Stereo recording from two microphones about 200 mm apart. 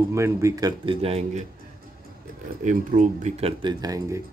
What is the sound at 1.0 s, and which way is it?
Speech, 30° right (ahead or behind).